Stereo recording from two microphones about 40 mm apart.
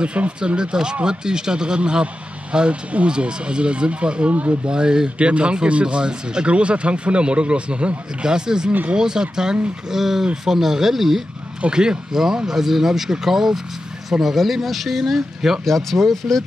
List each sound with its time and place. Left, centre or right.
0.0 s speech: right
8.3 s speech: centre
11.7 s speech: centre
15.6 s speech: centre